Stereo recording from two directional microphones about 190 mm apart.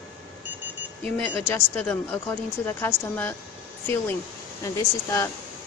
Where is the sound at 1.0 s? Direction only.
5° left (ahead or behind).